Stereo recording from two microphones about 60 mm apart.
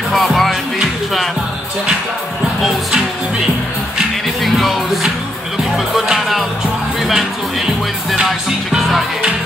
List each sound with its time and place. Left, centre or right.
0.1 s music: centre
4.4 s music: centre